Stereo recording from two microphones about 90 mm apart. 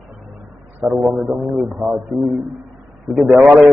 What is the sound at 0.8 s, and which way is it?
Speech, 5° right (ahead or behind).